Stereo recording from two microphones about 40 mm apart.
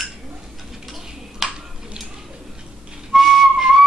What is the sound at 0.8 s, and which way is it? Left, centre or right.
Tick-tock, centre.